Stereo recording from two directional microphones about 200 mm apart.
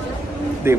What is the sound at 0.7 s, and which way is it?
Speech, 10° right (ahead or behind).